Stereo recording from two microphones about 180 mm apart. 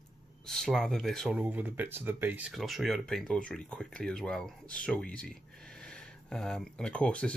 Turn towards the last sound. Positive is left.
turn(degrees=5)  # may be behind; listen again after turning